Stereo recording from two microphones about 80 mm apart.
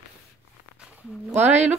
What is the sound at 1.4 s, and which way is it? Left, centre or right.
Speech, right.